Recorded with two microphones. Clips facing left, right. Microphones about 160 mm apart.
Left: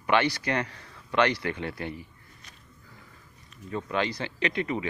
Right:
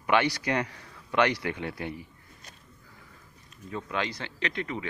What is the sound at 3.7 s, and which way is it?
Speech, centre (ahead or behind).